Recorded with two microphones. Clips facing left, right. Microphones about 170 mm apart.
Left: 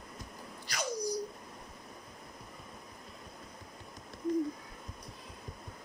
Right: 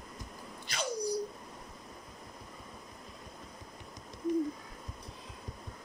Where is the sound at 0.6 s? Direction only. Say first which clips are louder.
Right 1 dB; 25° right (ahead or behind).